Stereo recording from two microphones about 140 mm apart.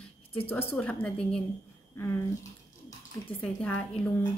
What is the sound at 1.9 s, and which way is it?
Speech, 15° left (ahead or behind).